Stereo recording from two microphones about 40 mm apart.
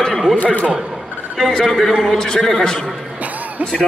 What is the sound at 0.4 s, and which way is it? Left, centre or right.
Speech, left.